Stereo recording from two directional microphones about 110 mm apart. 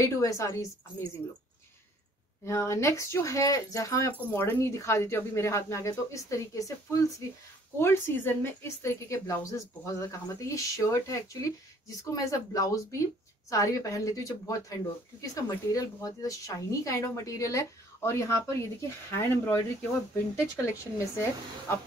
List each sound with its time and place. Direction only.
0.0 s speech: 30° left (ahead or behind)
2.4 s speech: 25° left (ahead or behind)